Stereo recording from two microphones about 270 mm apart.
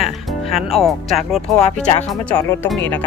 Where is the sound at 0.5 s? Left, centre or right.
Centre.